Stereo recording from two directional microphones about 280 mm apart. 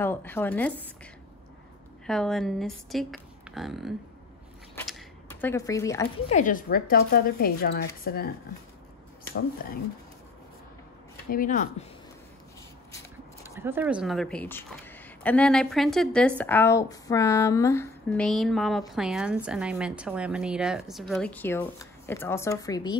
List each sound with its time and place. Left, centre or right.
0.0 s speech: centre
2.0 s speech: centre
4.7 s a sound: centre
6.2 s speech: left
11.2 s speech: left
13.4 s speech: centre